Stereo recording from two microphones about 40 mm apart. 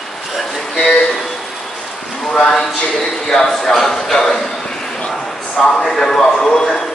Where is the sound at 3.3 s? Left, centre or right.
Centre.